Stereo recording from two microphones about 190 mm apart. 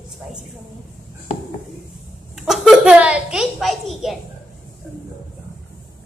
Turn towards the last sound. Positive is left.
turn(degrees=0)  # may be behind; listen again after turning